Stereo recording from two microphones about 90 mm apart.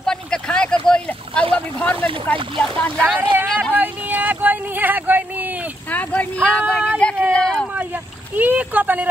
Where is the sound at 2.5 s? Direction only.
10° left (ahead or behind).